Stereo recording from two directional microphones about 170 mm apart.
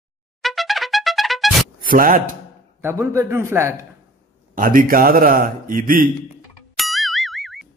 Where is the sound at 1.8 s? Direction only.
55° right (ahead or behind).